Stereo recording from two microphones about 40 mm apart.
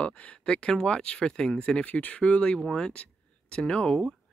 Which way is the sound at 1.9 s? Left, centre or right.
Left.